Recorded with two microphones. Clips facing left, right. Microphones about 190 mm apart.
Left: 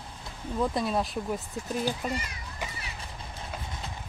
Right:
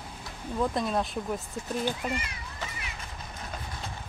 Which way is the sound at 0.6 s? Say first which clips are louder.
Even; centre (ahead or behind).